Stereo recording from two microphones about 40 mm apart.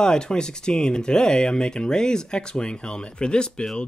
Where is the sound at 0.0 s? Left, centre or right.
Centre.